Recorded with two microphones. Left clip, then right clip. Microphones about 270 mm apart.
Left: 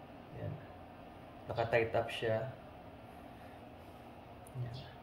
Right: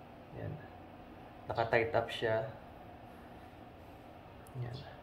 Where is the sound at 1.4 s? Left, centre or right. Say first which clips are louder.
Right 1 dB; centre.